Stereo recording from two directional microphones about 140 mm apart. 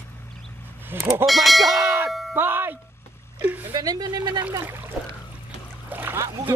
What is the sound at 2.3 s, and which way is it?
Speech, 15° right (ahead or behind).